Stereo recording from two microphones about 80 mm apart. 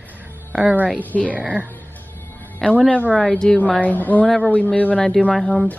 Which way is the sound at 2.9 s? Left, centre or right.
Centre.